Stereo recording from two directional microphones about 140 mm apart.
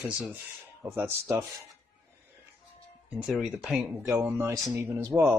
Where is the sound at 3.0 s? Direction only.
5° right (ahead or behind).